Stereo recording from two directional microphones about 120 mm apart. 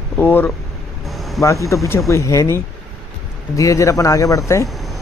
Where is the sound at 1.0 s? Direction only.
Centre (ahead or behind).